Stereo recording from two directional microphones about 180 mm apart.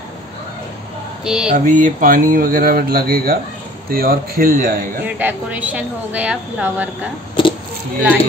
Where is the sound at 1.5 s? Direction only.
45° right (ahead or behind).